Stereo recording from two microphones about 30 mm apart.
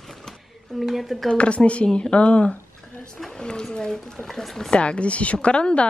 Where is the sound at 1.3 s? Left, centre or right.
Left.